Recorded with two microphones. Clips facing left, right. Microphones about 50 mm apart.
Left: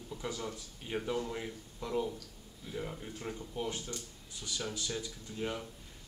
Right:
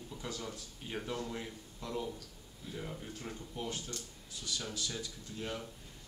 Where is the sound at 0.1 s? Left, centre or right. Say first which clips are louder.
Left 4 dB; centre.